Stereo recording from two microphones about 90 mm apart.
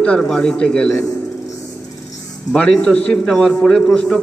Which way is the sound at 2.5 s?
10° left (ahead or behind).